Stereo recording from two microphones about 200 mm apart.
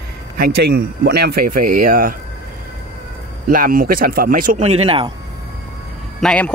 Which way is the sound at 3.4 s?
45° right (ahead or behind).